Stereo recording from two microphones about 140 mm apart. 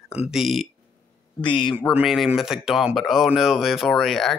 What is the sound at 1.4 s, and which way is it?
Speech, 35° left (ahead or behind).